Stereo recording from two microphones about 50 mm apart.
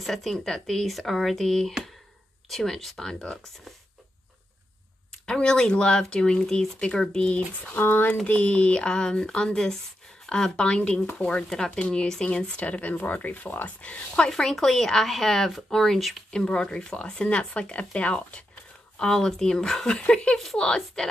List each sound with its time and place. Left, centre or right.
0.0 s speech: centre
5.2 s speech: centre
7.7 s speech: left
8.3 s speech: left
11.0 s speech: left
11.4 s speech: centre; by 13.7 s left
13.7 s speech: left
14.3 s speech: centre; by 18.4 s left
18.9 s speech: centre
20.0 s speech: left